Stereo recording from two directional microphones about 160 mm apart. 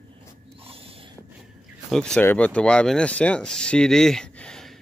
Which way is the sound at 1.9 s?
5° left (ahead or behind).